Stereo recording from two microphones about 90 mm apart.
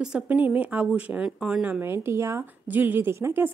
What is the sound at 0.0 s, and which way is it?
Speech, 10° right (ahead or behind).